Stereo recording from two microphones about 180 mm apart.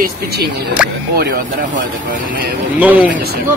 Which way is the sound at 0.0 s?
60° right (ahead or behind).